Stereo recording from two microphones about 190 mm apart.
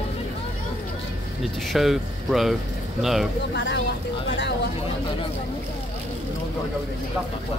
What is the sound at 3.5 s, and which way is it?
Speech, 65° left (ahead or behind).